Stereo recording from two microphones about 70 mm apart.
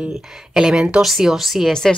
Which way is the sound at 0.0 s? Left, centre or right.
Centre.